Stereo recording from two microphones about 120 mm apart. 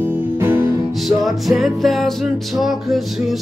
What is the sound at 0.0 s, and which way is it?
Music, 20° right (ahead or behind).